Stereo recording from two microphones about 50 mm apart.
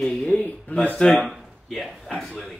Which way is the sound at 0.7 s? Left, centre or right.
Left.